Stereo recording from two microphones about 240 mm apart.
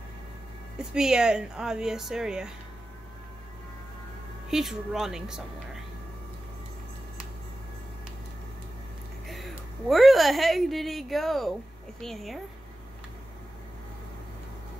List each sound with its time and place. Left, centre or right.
0.7 s speech: centre
4.5 s speech: centre
9.3 s a woman's voice: centre